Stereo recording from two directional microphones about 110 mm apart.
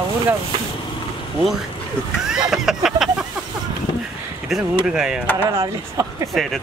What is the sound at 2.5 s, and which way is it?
Speech, 5° right (ahead or behind).